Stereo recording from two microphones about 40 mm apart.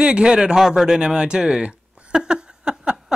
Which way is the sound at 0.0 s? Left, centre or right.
Right.